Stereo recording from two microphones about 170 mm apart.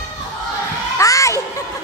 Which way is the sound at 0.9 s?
20° left (ahead or behind).